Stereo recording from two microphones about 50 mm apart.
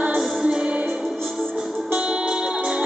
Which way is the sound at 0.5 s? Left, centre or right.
Right.